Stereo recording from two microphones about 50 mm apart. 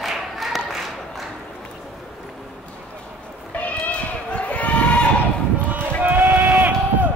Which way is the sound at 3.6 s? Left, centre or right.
Left.